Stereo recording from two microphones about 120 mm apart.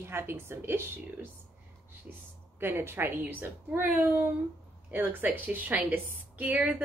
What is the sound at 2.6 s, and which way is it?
A woman's voice, 20° right (ahead or behind).